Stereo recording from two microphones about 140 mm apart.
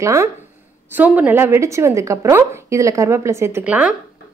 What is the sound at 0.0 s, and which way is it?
A woman's voice, 20° right (ahead or behind).